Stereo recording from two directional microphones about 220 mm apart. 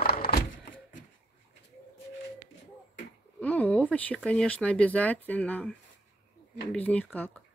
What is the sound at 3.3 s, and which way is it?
Speech, 5° left (ahead or behind).